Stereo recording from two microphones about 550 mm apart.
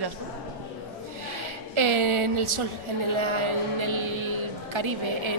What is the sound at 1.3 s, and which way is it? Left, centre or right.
A woman's voice, right.